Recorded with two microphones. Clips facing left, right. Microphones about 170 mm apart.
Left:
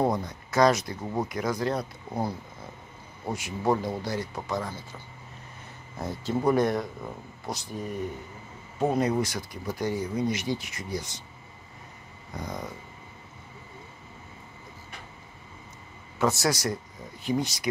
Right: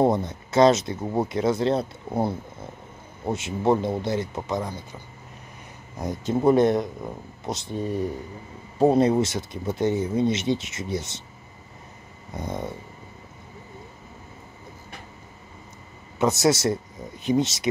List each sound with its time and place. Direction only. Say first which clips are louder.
0.0 s speech: right 5 dB; 25° right (ahead or behind)
12.4 s speech: right 5 dB; 25° right (ahead or behind)
16.2 s speech: right 5 dB; 20° right (ahead or behind)